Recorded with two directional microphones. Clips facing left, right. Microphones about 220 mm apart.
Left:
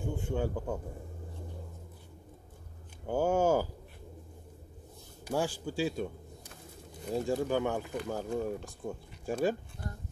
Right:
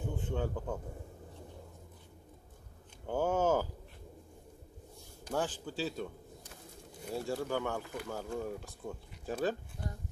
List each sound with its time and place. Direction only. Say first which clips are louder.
0.0 s a man's voice: left 3 dB; 10° left (ahead or behind)
3.1 s speech: left 3 dB; 10° left (ahead or behind)
5.2 s speech: left 3 dB; 10° left (ahead or behind)
7.1 s speech: left 5 dB; 15° left (ahead or behind)